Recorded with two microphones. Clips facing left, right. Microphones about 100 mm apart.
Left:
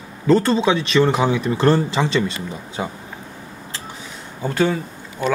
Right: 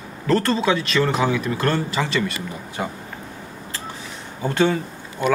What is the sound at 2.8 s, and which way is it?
Speech, 10° left (ahead or behind).